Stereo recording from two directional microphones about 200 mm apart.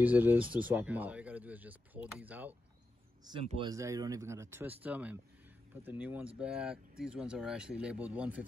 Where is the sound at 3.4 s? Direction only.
30° right (ahead or behind).